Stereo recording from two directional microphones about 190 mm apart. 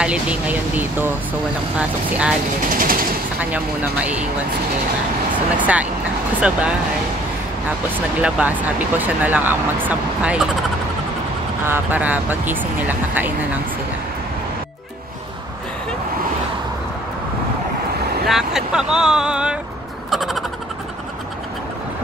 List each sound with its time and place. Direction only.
0.0 s speech: 5° right (ahead or behind)
2.6 s speech: 45° right (ahead or behind)
3.3 s speech: 5° right (ahead or behind)
5.6 s speech: 5° right (ahead or behind)
8.2 s speech: 5° right (ahead or behind)
11.6 s speech: 10° right (ahead or behind)
18.2 s speech: centre (ahead or behind)
20.1 s frog: centre (ahead or behind)